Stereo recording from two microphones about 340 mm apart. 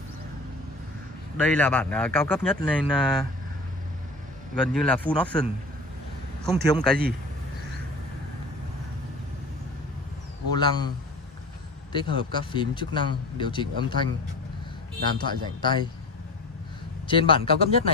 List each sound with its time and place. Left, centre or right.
1.3 s speech: centre
4.8 s speech: centre
10.5 s speech: centre
11.9 s speech: centre
15.2 s speech: centre
17.1 s speech: centre